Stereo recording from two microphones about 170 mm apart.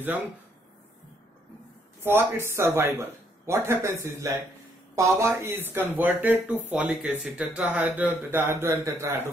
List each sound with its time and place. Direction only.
2.0 s a man's voice: 15° right (ahead or behind)